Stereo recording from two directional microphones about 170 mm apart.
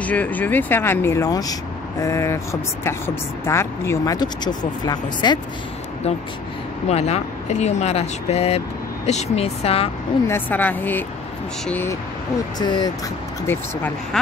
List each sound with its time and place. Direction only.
0.0 s speech: 10° left (ahead or behind); by 5.4 s 25° left (ahead or behind)
6.9 s speech: 40° left (ahead or behind)
10.2 s speech: 10° left (ahead or behind)
12.5 s speech: 25° left (ahead or behind)